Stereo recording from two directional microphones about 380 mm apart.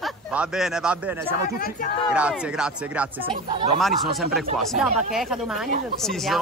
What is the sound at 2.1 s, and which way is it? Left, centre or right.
Speech, centre.